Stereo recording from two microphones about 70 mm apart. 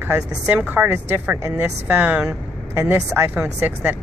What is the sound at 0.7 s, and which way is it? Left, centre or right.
Speech, right.